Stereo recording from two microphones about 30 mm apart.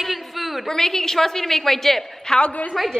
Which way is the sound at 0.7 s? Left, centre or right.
Centre.